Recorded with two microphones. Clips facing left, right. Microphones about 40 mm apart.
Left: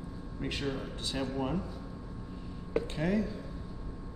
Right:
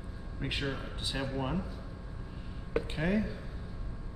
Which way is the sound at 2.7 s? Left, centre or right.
Centre.